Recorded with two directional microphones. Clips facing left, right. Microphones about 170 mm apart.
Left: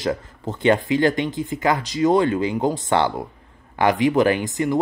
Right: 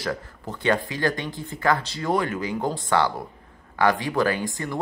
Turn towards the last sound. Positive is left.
turn(degrees=20)  # may be behind; listen again after turning